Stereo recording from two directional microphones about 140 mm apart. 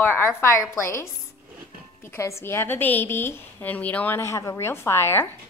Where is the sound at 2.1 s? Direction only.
20° left (ahead or behind).